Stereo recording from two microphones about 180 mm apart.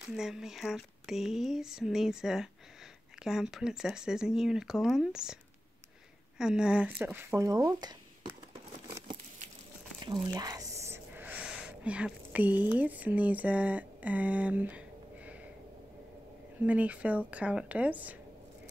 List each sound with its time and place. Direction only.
0.1 s a woman's voice: 5° right (ahead or behind); by 8.3 s 20° right (ahead or behind)
10.0 s speech: 20° right (ahead or behind)
16.6 s a woman's voice: 10° right (ahead or behind)